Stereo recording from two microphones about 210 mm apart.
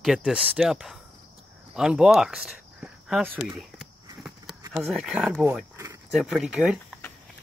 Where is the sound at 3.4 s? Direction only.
Centre (ahead or behind).